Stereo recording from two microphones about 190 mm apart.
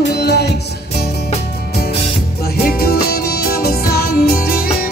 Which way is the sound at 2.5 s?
55° left (ahead or behind).